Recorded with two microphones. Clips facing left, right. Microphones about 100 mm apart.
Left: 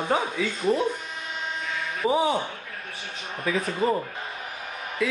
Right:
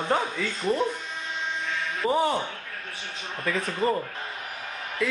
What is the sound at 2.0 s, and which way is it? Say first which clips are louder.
Speech: left 1 dB; 5° left (ahead or behind).